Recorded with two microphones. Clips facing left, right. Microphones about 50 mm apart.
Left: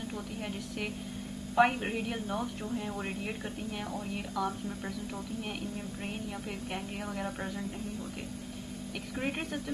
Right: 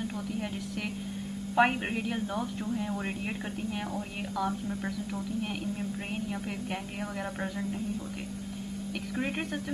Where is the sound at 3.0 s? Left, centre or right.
Centre.